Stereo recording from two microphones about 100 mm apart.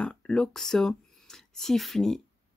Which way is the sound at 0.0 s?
10° left (ahead or behind).